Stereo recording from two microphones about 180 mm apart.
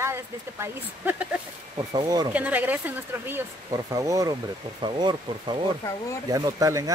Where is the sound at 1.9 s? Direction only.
20° right (ahead or behind).